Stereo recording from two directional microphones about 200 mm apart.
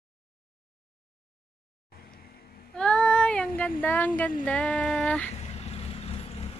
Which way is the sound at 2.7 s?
5° left (ahead or behind).